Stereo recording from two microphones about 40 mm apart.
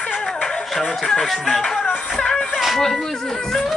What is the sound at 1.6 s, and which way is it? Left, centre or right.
Music, centre.